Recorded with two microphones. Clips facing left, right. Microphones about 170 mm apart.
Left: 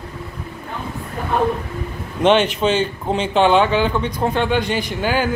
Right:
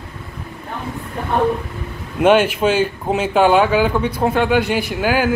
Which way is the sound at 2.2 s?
10° right (ahead or behind).